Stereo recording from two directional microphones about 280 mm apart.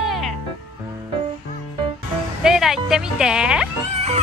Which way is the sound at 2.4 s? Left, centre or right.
Centre.